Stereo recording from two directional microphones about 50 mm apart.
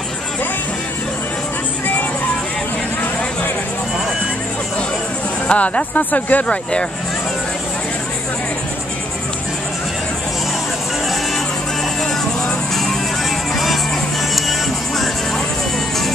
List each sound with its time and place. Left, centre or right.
5.5 s speech: left
6.4 s speech: left